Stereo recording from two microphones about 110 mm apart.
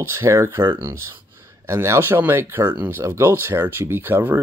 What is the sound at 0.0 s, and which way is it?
Speech, 25° right (ahead or behind).